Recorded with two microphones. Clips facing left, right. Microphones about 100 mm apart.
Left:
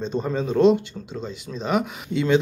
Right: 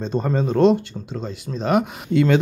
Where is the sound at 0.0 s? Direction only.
45° right (ahead or behind).